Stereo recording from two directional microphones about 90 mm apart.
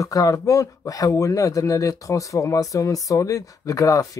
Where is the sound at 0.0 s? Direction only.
40° left (ahead or behind).